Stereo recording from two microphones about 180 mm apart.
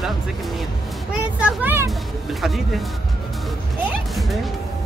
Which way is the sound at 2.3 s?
Centre (ahead or behind).